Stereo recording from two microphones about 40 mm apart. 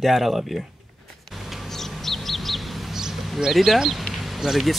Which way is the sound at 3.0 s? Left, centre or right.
Centre.